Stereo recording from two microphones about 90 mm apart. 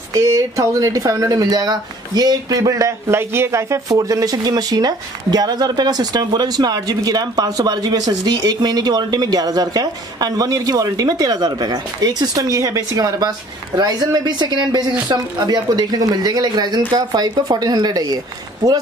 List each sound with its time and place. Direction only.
0.1 s speech: 35° right (ahead or behind)